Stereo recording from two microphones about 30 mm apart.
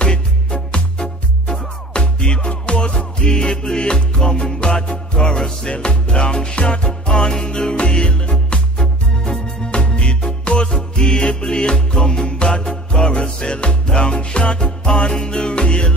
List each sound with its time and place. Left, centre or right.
0.0 s music: left
7.7 s music: left
8.7 s music: left
9.7 s music: left
10.7 s music: centre; by 14.6 s left
14.6 s music: left